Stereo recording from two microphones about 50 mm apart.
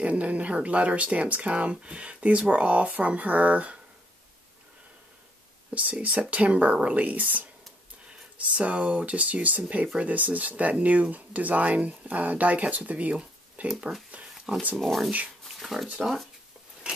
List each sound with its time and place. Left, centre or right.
0.0 s speech: right
5.8 s speech: right
13.7 s speech: centre
14.8 s speech: centre
15.4 s a sound: centre
16.0 s speech: centre